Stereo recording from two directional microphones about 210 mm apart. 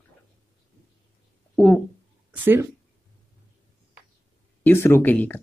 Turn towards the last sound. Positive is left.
turn(degrees=10)  # may be behind; listen again after turning